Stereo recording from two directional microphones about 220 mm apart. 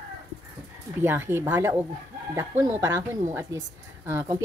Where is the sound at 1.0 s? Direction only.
10° right (ahead or behind).